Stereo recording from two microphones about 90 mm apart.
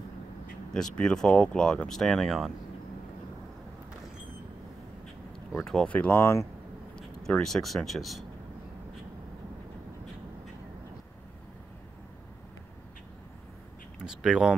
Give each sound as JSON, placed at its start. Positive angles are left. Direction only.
{"t": 0.7, "sound": "speech", "side_deg": 10}
{"t": 5.6, "sound": "speech", "side_deg": 5}
{"t": 5.9, "sound": "speech", "side_deg": 15}
{"t": 7.0, "sound": "speech", "side_deg": 5}
{"t": 14.0, "sound": "speech", "side_deg": -5}